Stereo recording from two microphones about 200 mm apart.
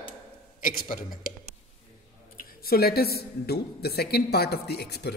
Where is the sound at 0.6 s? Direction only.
45° left (ahead or behind).